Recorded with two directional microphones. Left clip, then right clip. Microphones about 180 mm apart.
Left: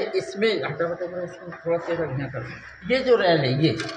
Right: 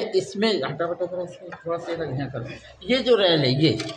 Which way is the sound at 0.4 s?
45° right (ahead or behind).